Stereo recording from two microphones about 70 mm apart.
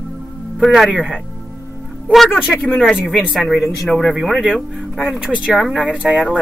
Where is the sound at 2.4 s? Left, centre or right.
Centre.